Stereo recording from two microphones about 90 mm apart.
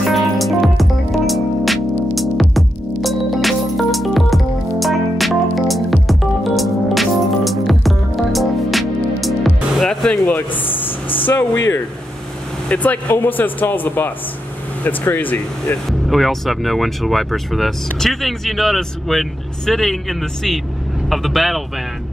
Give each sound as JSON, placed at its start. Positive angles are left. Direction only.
{"t": 0.1, "sound": "music", "side_deg": 0}
{"t": 10.2, "sound": "a sound", "side_deg": 20}
{"t": 11.1, "sound": "speech", "side_deg": 20}
{"t": 16.1, "sound": "speech", "side_deg": 0}